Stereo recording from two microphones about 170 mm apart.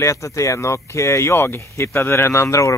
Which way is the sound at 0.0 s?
20° left (ahead or behind).